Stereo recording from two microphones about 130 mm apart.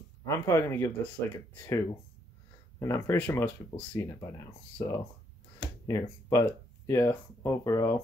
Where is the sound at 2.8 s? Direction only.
20° left (ahead or behind).